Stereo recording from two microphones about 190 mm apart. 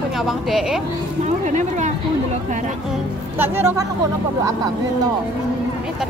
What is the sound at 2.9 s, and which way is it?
Speech, 10° right (ahead or behind).